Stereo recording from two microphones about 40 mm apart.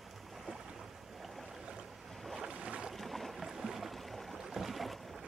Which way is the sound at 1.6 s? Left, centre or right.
Right.